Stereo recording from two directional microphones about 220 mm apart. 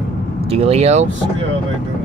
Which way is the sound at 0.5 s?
30° right (ahead or behind).